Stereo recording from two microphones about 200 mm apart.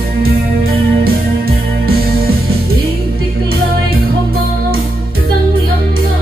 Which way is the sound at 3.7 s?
50° right (ahead or behind).